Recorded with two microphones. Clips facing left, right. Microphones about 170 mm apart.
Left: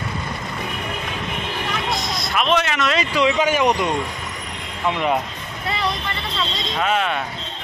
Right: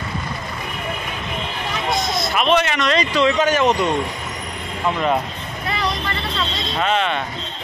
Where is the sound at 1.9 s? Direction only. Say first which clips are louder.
Right 4 dB; centre (ahead or behind).